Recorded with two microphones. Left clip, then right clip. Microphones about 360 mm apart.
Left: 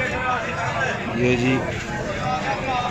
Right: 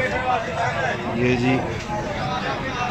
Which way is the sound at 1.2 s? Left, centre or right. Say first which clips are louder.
Left 1 dB; centre.